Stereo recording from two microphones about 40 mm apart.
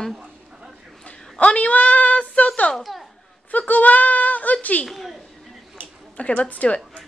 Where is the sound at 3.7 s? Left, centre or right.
Left.